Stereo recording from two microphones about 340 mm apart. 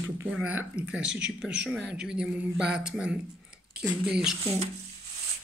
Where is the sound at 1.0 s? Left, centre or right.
Right.